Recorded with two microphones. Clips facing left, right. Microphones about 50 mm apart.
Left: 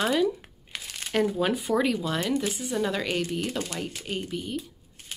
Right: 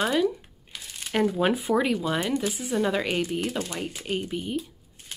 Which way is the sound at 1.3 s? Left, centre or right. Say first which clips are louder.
Right 2 dB; centre.